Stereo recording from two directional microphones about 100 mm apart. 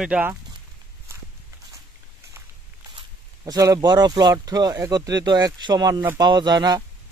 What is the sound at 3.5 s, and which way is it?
Speech, 35° right (ahead or behind).